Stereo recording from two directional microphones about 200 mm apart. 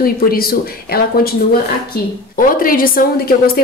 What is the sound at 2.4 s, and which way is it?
Speech, 45° left (ahead or behind).